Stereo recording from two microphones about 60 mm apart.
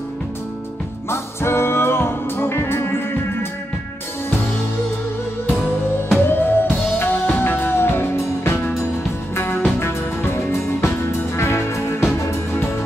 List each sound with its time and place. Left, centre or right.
1.1 s music: left
6.0 s music: left